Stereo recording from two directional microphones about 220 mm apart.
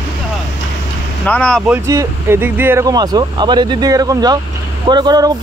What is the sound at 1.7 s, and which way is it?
Speech, 15° right (ahead or behind).